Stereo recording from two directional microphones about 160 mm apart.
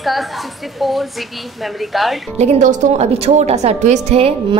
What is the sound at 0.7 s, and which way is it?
Speech, centre (ahead or behind).